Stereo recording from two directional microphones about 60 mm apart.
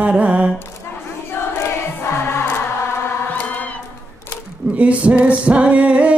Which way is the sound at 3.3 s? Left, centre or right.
Left.